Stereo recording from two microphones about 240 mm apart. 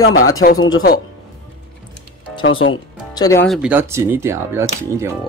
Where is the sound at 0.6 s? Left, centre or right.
Left.